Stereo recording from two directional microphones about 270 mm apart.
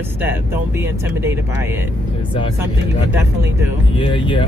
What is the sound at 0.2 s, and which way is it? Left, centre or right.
Speech, centre.